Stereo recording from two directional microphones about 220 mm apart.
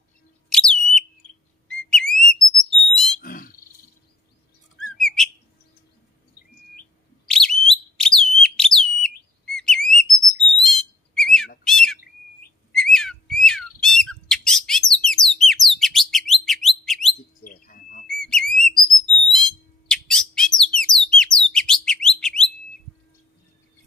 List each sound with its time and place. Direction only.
0.5 s whistle: 5° left (ahead or behind)
2.9 s a sound: 5° left (ahead or behind)
3.2 s frog: 40° left (ahead or behind)
4.9 s bird: centre (ahead or behind)
7.2 s bird: centre (ahead or behind)
7.6 s alarm: centre (ahead or behind)
10.3 s bird: centre (ahead or behind)
17.4 s a sound: 40° left (ahead or behind)
18.0 s whistle: centre (ahead or behind)
19.3 s bird: centre (ahead or behind)